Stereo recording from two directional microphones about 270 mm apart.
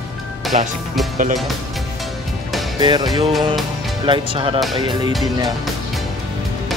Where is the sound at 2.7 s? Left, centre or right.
Centre.